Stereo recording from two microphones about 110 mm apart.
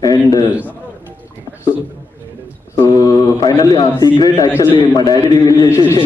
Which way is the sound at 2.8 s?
35° left (ahead or behind).